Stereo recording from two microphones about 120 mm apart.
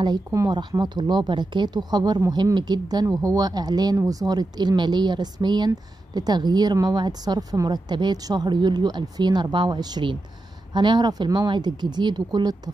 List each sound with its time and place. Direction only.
0.0 s a woman's voice: 30° right (ahead or behind)